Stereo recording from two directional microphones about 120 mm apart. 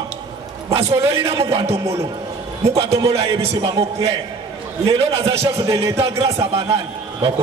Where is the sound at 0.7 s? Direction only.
55° right (ahead or behind).